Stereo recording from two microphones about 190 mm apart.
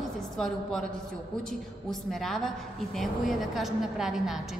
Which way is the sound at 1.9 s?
Centre (ahead or behind).